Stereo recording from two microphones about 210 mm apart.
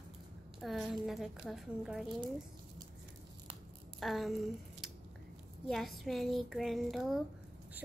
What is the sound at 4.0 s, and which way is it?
Speech, centre (ahead or behind).